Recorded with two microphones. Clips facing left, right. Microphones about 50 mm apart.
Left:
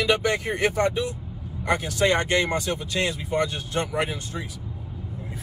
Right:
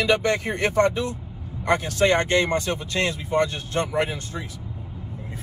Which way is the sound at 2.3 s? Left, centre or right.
Left.